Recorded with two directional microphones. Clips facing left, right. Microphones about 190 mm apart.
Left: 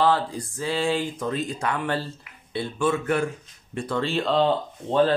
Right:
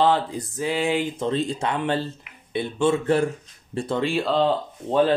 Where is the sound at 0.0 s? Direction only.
20° right (ahead or behind).